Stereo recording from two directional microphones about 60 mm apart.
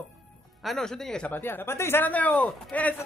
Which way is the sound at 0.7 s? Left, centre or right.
Centre.